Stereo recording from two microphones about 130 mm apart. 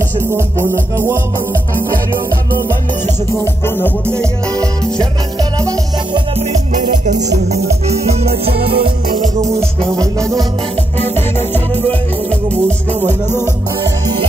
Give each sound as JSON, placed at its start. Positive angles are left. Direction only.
{"t": 0.9, "sound": "music", "side_deg": -20}
{"t": 3.3, "sound": "music", "side_deg": 15}
{"t": 5.4, "sound": "music", "side_deg": -30}
{"t": 6.7, "sound": "music", "side_deg": -75}
{"t": 7.5, "sound": "music", "side_deg": -55}
{"t": 9.1, "sound": "music", "side_deg": -80}
{"t": 9.9, "sound": "music", "side_deg": -25}
{"t": 11.1, "sound": "music", "side_deg": 15}